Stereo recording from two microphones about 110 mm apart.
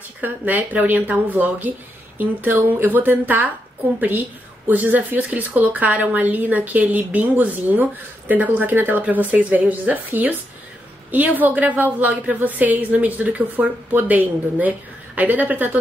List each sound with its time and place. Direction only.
0.2 s a woman's voice: 15° right (ahead or behind)
4.6 s a woman's voice: 15° right (ahead or behind)